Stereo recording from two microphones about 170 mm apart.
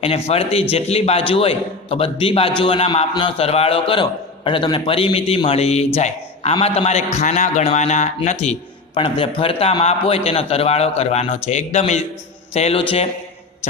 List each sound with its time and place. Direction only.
0.0 s a man's voice: 35° left (ahead or behind)